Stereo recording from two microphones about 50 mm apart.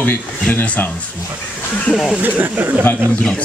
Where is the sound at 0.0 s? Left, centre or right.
Left.